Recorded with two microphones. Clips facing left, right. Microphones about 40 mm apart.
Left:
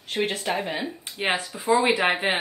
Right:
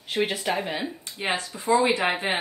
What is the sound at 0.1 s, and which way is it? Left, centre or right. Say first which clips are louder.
Speech: even; centre.